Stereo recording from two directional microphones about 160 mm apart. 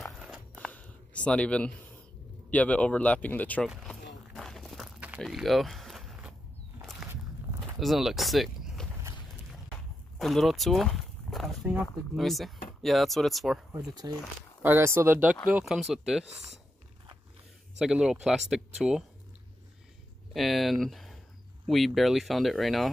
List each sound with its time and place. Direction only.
0.1 s a sound: centre (ahead or behind)
2.5 s speech: 10° left (ahead or behind)
3.6 s a sound: centre (ahead or behind)
7.8 s speech: centre (ahead or behind)
10.1 s speech: centre (ahead or behind)
14.0 s speech: 20° right (ahead or behind); by 16.0 s centre (ahead or behind)
17.7 s speech: 5° right (ahead or behind)
20.3 s speech: centre (ahead or behind)